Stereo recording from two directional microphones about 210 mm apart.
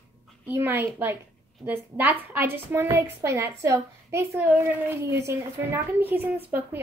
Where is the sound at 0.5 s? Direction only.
10° right (ahead or behind).